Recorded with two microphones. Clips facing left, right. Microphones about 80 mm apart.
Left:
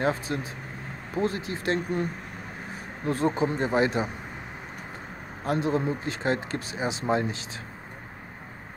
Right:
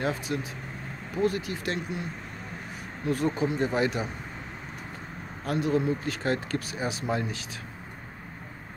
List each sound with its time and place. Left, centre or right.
0.0 s speech: left
3.1 s speech: left
5.4 s speech: left